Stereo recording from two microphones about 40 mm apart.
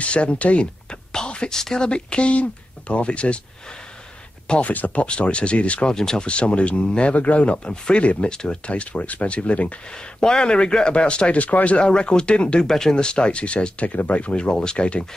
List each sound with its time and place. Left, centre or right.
0.0 s speech: left; by 1.9 s centre
1.9 s a man's voice: left
4.6 s speech: left
5.0 s a man's voice: left
5.9 s speech: centre
6.2 s a man's voice: left
8.3 s speech: left
9.9 s a man's voice: centre
12.6 s speech: centre
12.9 s speech: left
14.3 s a man's voice: left